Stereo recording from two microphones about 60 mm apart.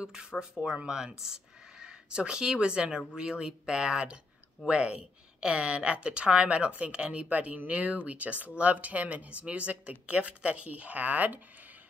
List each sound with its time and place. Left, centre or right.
0.0 s a woman's voice: centre; by 11.4 s right